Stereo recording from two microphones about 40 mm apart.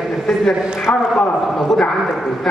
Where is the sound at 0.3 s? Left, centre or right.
Centre.